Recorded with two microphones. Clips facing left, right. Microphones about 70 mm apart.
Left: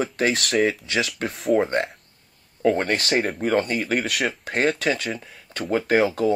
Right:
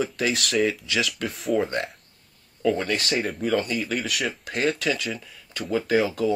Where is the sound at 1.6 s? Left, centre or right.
Left.